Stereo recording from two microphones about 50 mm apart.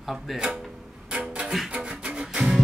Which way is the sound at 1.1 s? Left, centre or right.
Right.